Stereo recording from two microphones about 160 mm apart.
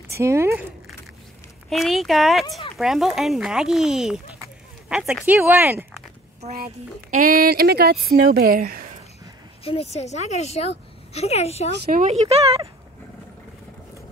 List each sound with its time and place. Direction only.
0.1 s speech: 15° right (ahead or behind)
1.7 s speech: centre (ahead or behind)
6.5 s speech: 65° right (ahead or behind)
9.7 s a woman's voice: 40° left (ahead or behind)
11.7 s speech: 85° right
12.0 s speech: 40° right (ahead or behind)